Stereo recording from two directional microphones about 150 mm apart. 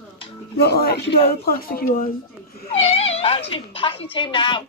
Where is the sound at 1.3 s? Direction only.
75° left (ahead or behind).